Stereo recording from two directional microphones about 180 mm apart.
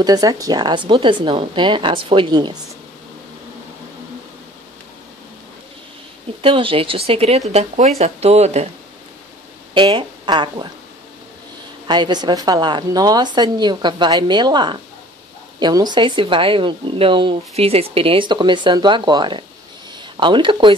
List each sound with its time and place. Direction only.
0.0 s a woman's voice: 20° right (ahead or behind)
6.4 s speech: 30° right (ahead or behind)
9.8 s a woman's voice: 25° right (ahead or behind)
11.9 s a woman's voice: 25° right (ahead or behind)